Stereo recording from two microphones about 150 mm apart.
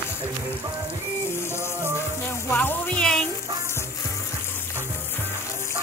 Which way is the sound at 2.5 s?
10° left (ahead or behind).